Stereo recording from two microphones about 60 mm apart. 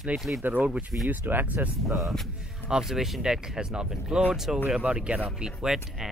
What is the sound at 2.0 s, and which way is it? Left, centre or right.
Speech, centre.